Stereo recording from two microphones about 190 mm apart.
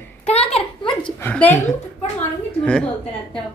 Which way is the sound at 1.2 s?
10° left (ahead or behind).